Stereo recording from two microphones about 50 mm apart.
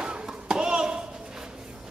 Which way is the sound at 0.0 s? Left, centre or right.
Centre.